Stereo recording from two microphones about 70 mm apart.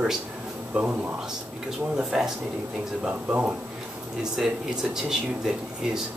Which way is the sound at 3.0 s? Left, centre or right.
Right.